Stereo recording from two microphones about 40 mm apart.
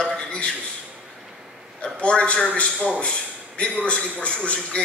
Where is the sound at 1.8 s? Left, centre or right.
Left.